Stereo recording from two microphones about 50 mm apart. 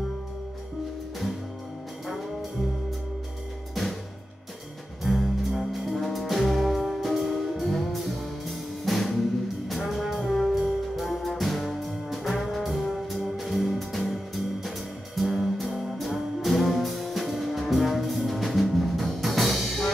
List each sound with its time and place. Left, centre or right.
5.0 s brass instrument: centre
9.7 s music: centre
15.1 s brass instrument: centre